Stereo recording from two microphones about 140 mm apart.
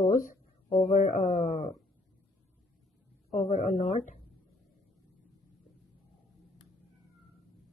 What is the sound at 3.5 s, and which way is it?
Speech, 65° left (ahead or behind).